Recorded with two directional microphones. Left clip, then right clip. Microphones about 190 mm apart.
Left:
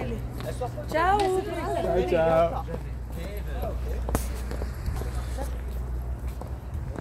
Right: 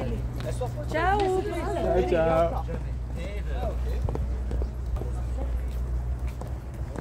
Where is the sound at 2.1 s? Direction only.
20° right (ahead or behind).